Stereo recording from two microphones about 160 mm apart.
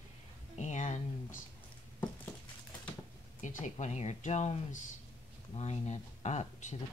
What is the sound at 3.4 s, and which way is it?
Speech, 50° left (ahead or behind).